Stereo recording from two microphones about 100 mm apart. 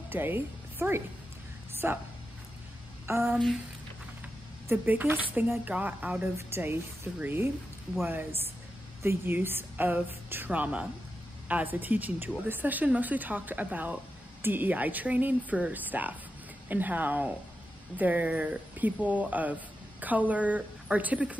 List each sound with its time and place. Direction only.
0.1 s speech: 20° right (ahead or behind)
3.3 s a sound: centre (ahead or behind)
4.6 s a woman's voice: 20° right (ahead or behind)